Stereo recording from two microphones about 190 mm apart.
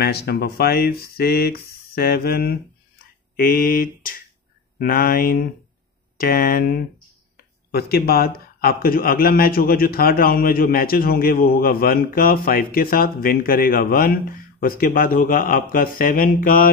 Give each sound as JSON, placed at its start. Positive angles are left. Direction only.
{"t": 0.0, "sound": "speech", "side_deg": 55}